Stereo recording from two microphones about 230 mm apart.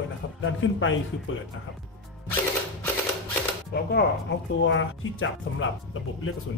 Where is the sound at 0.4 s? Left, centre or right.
Left.